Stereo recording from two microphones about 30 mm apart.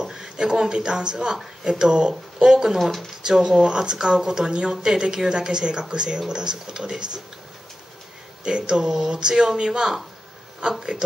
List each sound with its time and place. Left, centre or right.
0.0 s speech: right
2.8 s speech: centre
3.3 s speech: centre
8.5 s speech: right
8.8 s speech: centre